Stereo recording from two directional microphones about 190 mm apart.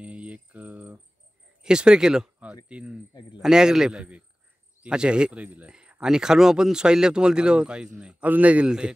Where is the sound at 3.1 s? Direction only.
25° left (ahead or behind).